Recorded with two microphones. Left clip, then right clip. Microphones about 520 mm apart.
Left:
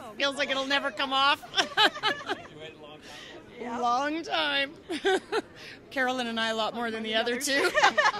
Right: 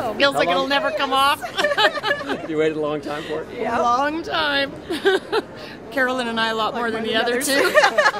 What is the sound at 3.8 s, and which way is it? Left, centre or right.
Speech, left.